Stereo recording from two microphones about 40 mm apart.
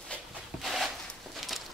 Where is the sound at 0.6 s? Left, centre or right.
Centre.